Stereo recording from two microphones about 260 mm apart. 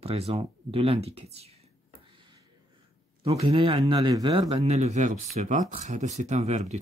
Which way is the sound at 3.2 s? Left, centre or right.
Right.